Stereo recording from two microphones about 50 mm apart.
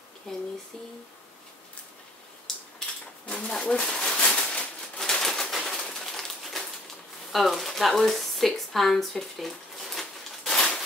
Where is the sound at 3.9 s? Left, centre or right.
Centre.